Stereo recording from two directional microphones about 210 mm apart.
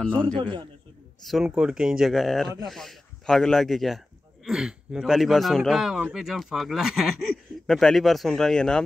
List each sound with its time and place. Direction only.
1.2 s speech: centre (ahead or behind)